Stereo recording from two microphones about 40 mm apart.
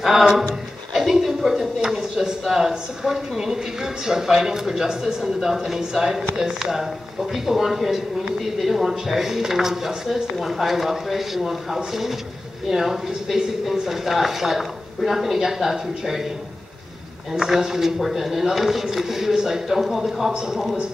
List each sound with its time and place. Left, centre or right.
0.0 s speech: centre
1.2 s a sound: centre
2.4 s a man's voice: centre
17.3 s speech: centre